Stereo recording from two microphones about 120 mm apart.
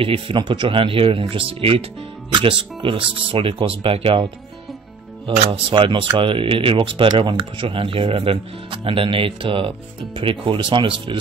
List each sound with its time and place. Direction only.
0.0 s speech: 45° right (ahead or behind)
5.5 s speech: 45° right (ahead or behind)